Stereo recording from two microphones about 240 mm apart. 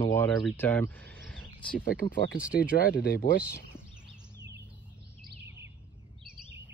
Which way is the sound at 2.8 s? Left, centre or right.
Left.